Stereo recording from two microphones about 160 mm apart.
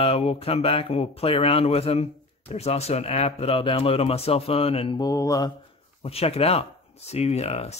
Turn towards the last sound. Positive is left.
turn(degrees=40)  # may be behind; listen again after turning